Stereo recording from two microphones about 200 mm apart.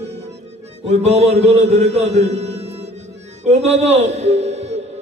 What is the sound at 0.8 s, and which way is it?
Mantra, 30° right (ahead or behind).